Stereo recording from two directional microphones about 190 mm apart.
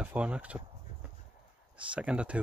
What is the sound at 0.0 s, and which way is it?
Speech, 5° right (ahead or behind).